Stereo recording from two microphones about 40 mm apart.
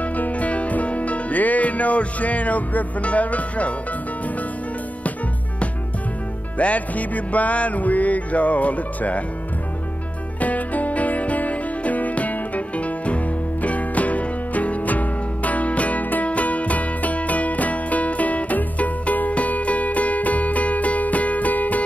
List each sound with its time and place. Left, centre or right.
0.0 s music: left
6.6 s music: left
10.4 s music: left